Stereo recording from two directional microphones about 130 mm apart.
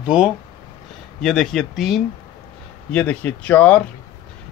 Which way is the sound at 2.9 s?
10° left (ahead or behind).